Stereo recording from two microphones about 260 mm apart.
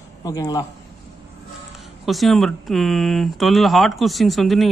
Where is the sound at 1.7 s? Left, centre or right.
Centre.